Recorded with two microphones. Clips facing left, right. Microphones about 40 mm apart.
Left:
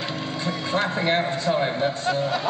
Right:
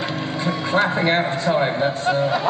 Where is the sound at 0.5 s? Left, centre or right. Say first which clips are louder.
Right 5 dB; centre.